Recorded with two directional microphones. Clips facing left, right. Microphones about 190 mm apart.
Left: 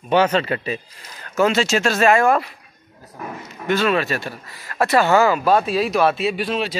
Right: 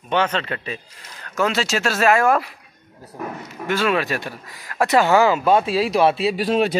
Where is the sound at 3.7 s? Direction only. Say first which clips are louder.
Left 2 dB; 10° right (ahead or behind).